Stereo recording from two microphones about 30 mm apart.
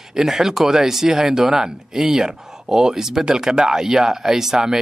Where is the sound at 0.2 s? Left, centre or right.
Centre.